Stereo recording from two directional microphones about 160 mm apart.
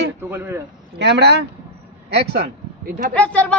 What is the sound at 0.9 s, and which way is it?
Speech, 90° right.